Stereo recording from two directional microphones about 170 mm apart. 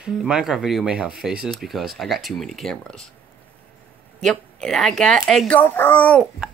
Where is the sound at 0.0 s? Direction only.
5° right (ahead or behind).